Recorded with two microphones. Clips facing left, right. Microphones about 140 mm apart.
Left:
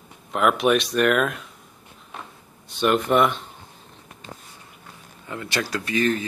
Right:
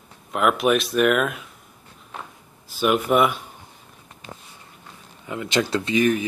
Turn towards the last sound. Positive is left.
turn(degrees=-15)  # may be behind; listen again after turning